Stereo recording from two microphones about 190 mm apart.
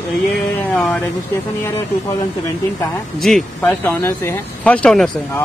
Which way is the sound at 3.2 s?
Centre (ahead or behind).